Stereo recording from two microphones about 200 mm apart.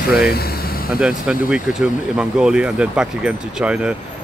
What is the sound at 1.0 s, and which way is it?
Speech, 5° right (ahead or behind).